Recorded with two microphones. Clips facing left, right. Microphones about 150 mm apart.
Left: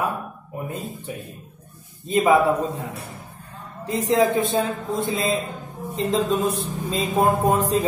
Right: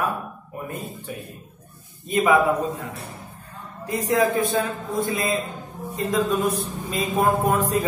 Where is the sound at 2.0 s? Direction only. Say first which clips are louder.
Left 1 dB; 30° left (ahead or behind).